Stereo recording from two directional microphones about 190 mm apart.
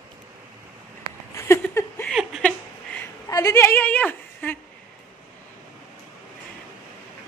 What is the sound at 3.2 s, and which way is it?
A woman's voice, 15° left (ahead or behind).